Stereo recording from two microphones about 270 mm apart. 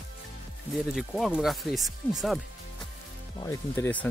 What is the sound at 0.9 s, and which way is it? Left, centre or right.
Speech, centre.